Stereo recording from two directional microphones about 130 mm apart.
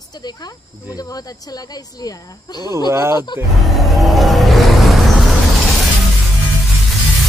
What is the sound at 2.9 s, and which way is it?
Speech, 20° right (ahead or behind).